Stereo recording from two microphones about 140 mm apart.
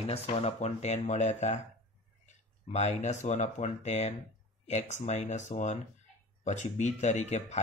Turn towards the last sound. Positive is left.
turn(degrees=55)  # may be behind; listen again after turning